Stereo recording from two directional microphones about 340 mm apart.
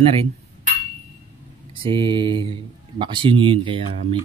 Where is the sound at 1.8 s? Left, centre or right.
Centre.